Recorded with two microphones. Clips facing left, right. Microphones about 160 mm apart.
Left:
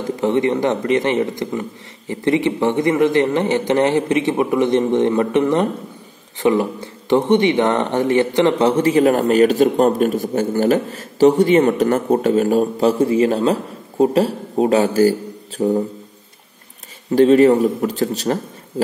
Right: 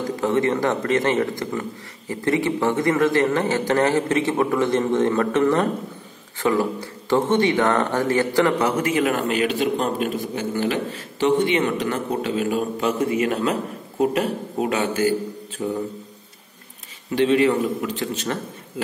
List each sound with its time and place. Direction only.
0.0 s a man's voice: 20° left (ahead or behind); by 15.8 s 40° left (ahead or behind)
17.1 s speech: 40° left (ahead or behind)